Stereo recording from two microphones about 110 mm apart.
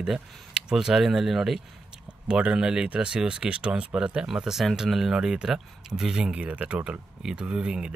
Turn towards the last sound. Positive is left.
turn(degrees=-10)  # may be behind; listen again after turning